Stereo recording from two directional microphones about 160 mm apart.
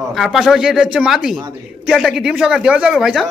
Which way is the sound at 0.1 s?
Centre (ahead or behind).